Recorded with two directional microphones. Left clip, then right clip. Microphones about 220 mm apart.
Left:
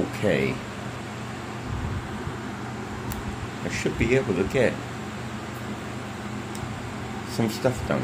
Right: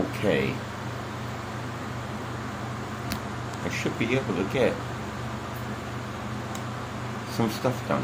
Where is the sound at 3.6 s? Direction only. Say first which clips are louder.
Left 3 dB; 15° left (ahead or behind).